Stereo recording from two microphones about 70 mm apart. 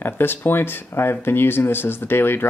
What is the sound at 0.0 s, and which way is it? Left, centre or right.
Speech, left.